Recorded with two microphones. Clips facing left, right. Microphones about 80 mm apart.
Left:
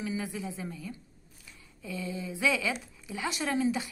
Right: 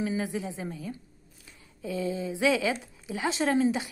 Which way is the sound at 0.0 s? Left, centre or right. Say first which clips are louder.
Right 4 dB; right.